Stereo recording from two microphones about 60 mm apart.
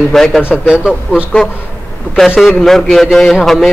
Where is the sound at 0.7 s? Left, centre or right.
Centre.